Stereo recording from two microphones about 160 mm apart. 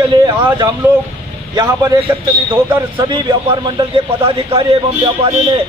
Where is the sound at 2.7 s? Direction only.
30° right (ahead or behind).